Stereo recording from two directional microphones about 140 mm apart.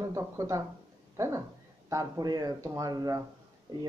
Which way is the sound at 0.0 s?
20° right (ahead or behind).